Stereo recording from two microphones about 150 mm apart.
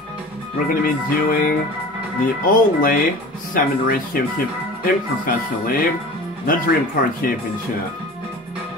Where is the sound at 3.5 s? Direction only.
70° left (ahead or behind).